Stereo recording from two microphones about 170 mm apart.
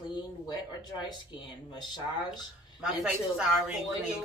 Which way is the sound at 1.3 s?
25° left (ahead or behind).